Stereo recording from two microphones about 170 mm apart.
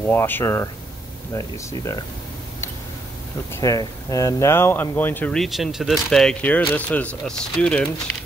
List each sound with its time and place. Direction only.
0.0 s speech: 10° left (ahead or behind)
3.5 s speech: 20° left (ahead or behind)